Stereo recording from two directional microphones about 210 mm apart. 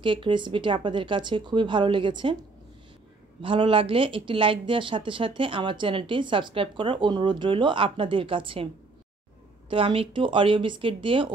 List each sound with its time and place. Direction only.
0.0 s speech: 25° right (ahead or behind)
3.4 s speech: 25° right (ahead or behind)
9.7 s speech: 25° right (ahead or behind)